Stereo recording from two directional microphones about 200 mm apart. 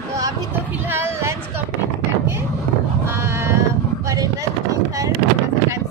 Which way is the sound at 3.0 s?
10° right (ahead or behind).